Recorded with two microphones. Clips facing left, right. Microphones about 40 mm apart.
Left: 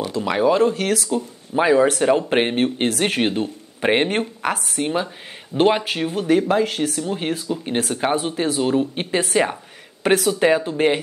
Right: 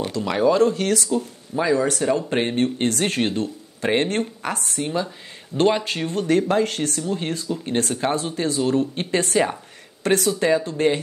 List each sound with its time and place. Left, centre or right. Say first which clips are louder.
0.1 s speech: left 1 dB; centre
0.7 s speech: even; centre
1.5 s speech: left 5 dB; left
2.5 s speech: left 1 dB; centre
4.7 s speech: left 1 dB; left
5.0 s speech: left 2 dB; centre
5.9 s speech: left 2 dB; centre